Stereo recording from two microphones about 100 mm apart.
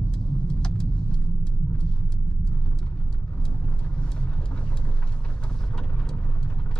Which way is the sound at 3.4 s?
10° left (ahead or behind).